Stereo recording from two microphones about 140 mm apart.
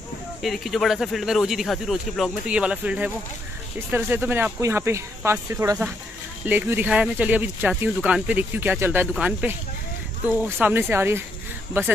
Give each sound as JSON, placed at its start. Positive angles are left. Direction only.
{"t": 0.4, "sound": "speech", "side_deg": 0}